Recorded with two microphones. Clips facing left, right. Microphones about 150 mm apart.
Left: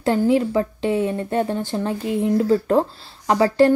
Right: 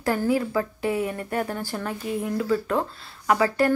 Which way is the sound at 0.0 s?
25° left (ahead or behind).